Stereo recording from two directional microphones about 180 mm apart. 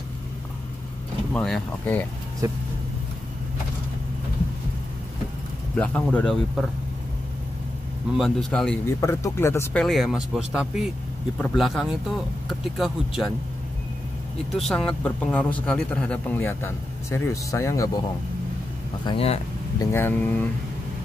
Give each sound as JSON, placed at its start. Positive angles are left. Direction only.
{"t": 1.3, "sound": "a man's voice", "side_deg": 5}
{"t": 2.4, "sound": "speech", "side_deg": -20}
{"t": 5.8, "sound": "a man's voice", "side_deg": 5}
{"t": 8.2, "sound": "speech", "side_deg": 0}
{"t": 9.0, "sound": "a man's voice", "side_deg": 15}
{"t": 9.8, "sound": "speech", "side_deg": 0}
{"t": 14.7, "sound": "a man's voice", "side_deg": 5}
{"t": 19.0, "sound": "speech", "side_deg": 35}
{"t": 19.8, "sound": "a man's voice", "side_deg": 15}